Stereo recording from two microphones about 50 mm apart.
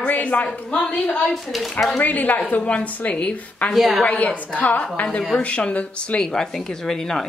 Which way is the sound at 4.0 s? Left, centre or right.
Left.